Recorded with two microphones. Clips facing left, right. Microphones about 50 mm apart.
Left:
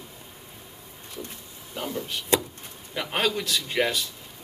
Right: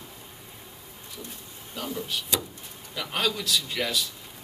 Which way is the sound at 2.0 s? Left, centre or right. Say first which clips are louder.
Left 5 dB; left.